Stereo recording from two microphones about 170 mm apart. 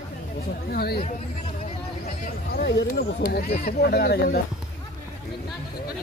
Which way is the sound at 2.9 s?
55° left (ahead or behind).